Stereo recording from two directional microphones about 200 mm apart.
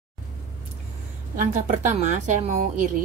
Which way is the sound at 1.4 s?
40° right (ahead or behind).